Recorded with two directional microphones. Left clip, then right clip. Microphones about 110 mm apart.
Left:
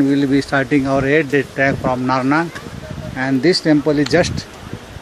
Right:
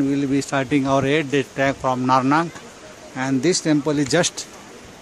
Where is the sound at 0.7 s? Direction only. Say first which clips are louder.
Left 3 dB; 30° right (ahead or behind).